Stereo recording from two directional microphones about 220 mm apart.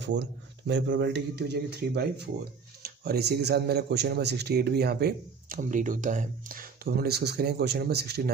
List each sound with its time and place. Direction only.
0.0 s speech: 50° right (ahead or behind)